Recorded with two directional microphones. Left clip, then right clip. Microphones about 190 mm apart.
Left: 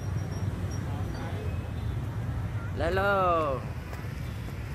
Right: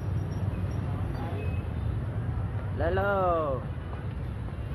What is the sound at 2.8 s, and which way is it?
Speech, 20° left (ahead or behind).